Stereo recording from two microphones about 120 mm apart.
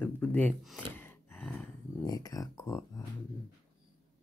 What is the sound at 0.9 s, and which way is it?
Gasp, 15° left (ahead or behind).